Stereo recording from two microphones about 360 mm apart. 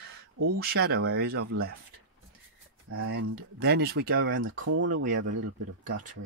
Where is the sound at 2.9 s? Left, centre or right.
Right.